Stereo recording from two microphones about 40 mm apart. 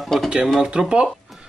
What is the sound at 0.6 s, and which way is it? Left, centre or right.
Speech, right.